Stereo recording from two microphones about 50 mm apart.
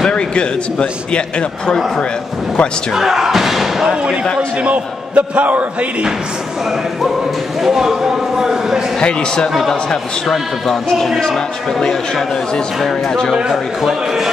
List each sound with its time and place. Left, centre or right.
0.1 s a man's voice: centre
2.9 s speech: centre
4.6 s a man's voice: right
7.6 s a man's voice: centre
9.7 s a man's voice: centre
13.3 s a man's voice: centre